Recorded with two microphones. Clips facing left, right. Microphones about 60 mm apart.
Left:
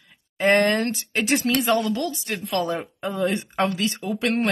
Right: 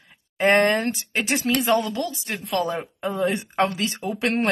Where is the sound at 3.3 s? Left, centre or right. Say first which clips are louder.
Right 1 dB; right.